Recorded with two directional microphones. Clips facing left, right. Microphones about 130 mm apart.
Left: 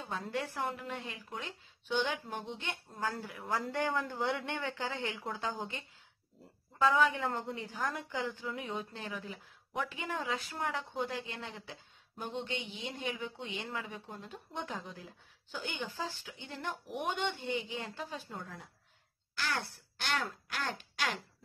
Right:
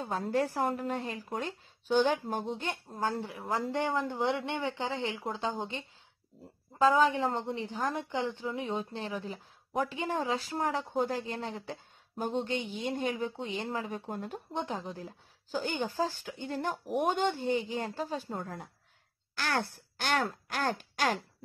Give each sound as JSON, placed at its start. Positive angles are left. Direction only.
{"t": 0.0, "sound": "a woman's voice", "side_deg": -40}
{"t": 14.5, "sound": "speech", "side_deg": -30}